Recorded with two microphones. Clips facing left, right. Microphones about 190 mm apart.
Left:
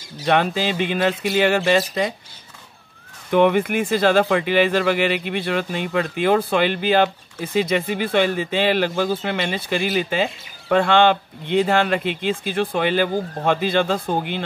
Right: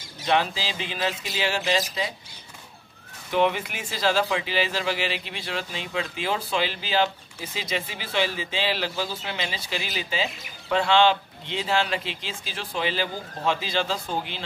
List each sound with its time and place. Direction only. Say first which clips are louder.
0.3 s speech: left 6 dB; 55° left (ahead or behind)
3.3 s speech: left 7 dB; 55° left (ahead or behind)